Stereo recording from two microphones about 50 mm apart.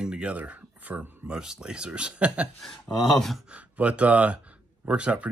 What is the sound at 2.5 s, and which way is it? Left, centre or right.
Speech, centre.